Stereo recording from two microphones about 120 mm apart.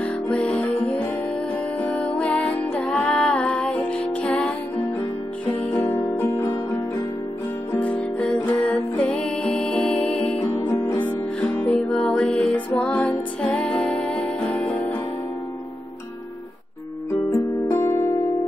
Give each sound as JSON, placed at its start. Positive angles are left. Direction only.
{"t": 0.0, "sound": "music", "side_deg": 10}
{"t": 5.8, "sound": "music", "side_deg": 15}
{"t": 7.7, "sound": "music", "side_deg": 10}
{"t": 10.4, "sound": "music", "side_deg": 20}
{"t": 17.6, "sound": "music", "side_deg": 20}